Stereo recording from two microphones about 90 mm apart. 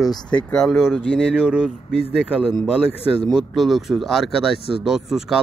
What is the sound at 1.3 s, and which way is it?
Speech, 10° right (ahead or behind).